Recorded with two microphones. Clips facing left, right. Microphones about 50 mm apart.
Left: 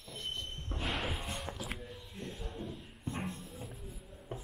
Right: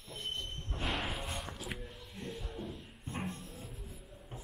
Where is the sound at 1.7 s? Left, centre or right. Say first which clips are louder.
Even; centre.